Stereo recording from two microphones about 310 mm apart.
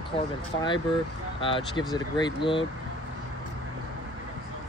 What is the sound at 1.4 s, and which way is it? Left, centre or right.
Speech, centre.